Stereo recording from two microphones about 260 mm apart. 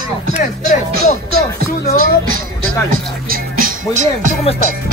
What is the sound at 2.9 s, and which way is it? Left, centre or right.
Speech, right.